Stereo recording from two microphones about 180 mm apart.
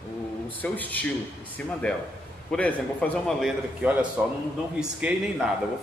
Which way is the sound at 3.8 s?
10° right (ahead or behind).